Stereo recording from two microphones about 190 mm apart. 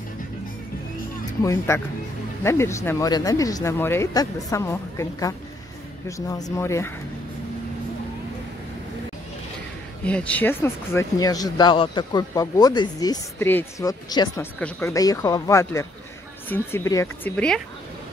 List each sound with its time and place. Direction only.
1.4 s speech: 15° left (ahead or behind)
10.0 s speech: 5° left (ahead or behind)
14.4 s speech: 10° left (ahead or behind)